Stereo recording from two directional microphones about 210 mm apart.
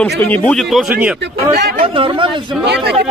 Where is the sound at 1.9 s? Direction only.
25° right (ahead or behind).